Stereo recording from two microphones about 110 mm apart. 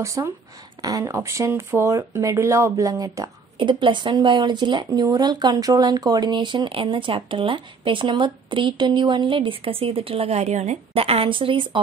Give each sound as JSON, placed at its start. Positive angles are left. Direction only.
{"t": 0.0, "sound": "speech", "side_deg": -25}
{"t": 3.5, "sound": "speech", "side_deg": -45}